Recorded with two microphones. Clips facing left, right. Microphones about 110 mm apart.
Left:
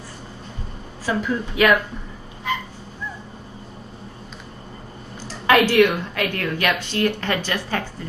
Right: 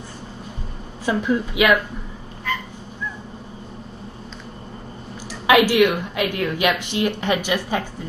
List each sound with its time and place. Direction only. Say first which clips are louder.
1.0 s a woman's voice: right 3 dB; 15° right (ahead or behind)
2.5 s dog: left 1 dB; 20° left (ahead or behind)
5.3 s a woman's voice: right 1 dB; 15° right (ahead or behind)